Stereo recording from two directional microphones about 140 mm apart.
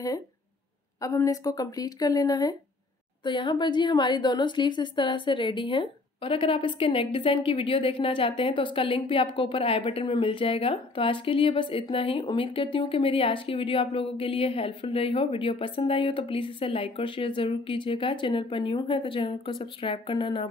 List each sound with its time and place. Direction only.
1.0 s a woman's voice: 25° left (ahead or behind)